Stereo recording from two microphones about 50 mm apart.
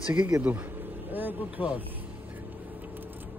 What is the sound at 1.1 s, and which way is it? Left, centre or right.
Vehicle, right.